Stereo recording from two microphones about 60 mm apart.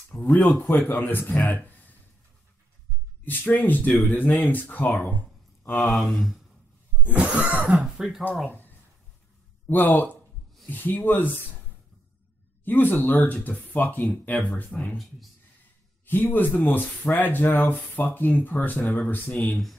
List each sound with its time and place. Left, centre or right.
0.2 s speech: left
3.3 s speech: left
5.8 s speech: centre
7.2 s cough: centre
7.7 s speech: centre
8.5 s a sound: left
9.7 s speech: left
12.6 s speech: left
16.1 s speech: left